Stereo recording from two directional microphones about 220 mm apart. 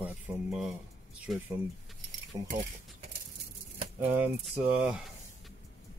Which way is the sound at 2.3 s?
15° right (ahead or behind).